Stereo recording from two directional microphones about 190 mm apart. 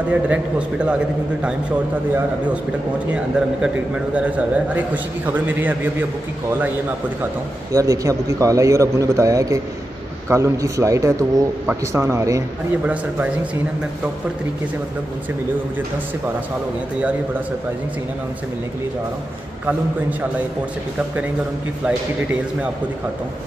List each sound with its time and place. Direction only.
0.1 s a man's voice: 5° right (ahead or behind)
3.1 s a man's voice: 5° right (ahead or behind)
7.7 s a man's voice: 15° right (ahead or behind)
19.6 s a man's voice: 10° right (ahead or behind)
21.8 s a man's voice: 5° right (ahead or behind)